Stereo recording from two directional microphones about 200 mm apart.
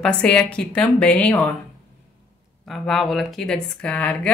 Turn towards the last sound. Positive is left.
turn(degrees=5)  # may be behind; listen again after turning